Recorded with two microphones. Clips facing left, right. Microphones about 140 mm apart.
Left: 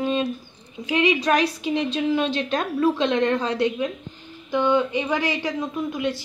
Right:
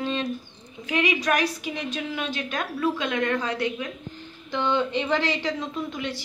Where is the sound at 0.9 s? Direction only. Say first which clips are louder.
Left 4 dB; 25° left (ahead or behind).